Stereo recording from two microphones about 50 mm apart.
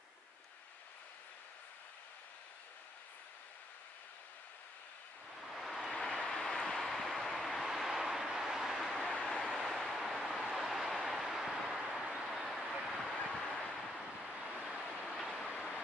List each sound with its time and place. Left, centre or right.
5.3 s vehicle: centre
5.9 s vehicle: centre
9.1 s a sound: centre
9.5 s vehicle: centre
12.2 s a sound: centre
13.0 s vehicle: centre
14.5 s waves: centre
15.0 s vehicle: centre